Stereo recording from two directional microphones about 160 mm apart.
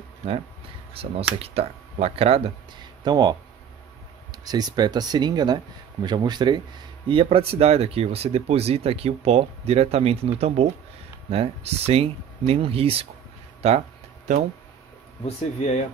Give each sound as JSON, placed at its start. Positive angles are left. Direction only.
{"t": 1.0, "sound": "speech", "side_deg": -35}
{"t": 15.2, "sound": "speech", "side_deg": 45}